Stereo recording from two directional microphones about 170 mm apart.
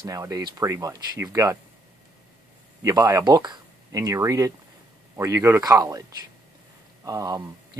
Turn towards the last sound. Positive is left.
turn(degrees=-20)  # may be behind; listen again after turning